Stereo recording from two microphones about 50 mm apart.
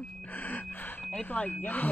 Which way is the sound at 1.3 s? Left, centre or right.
Left.